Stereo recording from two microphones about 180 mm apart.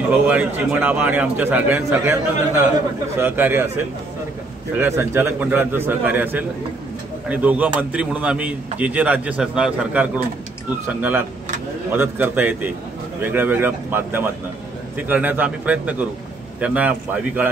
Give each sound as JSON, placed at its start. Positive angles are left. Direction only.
{"t": 0.1, "sound": "a man's voice", "side_deg": -5}